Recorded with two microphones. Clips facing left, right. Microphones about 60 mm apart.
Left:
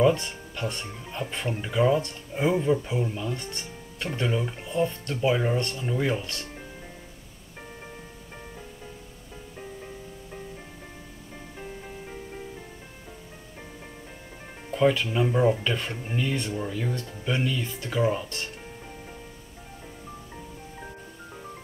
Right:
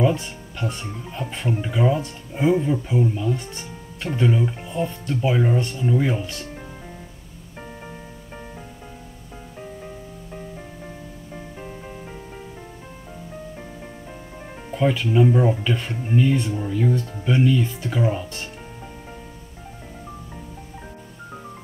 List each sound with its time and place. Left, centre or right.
0.0 s speech: centre
11.3 s music: centre
14.7 s speech: centre